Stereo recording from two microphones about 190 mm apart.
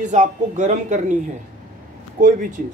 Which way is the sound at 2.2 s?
45° right (ahead or behind).